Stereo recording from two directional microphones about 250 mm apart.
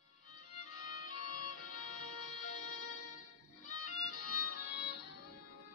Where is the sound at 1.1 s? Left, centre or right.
Left.